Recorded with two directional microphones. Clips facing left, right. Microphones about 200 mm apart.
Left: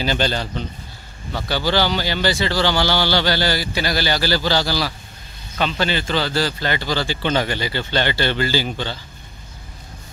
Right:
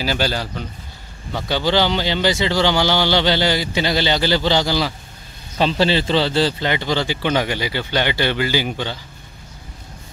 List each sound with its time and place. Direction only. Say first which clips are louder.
0.0 s speech: even; 5° right (ahead or behind)
1.3 s speech: right 2 dB; 20° right (ahead or behind)
5.6 s speech: right 4 dB; 30° right (ahead or behind); by 9.0 s 15° right (ahead or behind)